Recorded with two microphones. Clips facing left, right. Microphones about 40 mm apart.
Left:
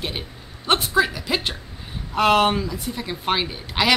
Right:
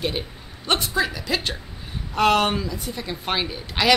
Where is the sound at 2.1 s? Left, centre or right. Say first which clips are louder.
Left 2 dB; centre.